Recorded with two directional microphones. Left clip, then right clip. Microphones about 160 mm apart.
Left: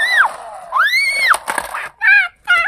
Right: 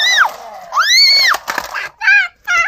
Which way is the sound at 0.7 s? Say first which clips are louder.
Right 4 dB; 50° right (ahead or behind).